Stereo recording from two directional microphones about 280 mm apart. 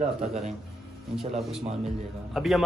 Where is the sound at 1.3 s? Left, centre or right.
Centre.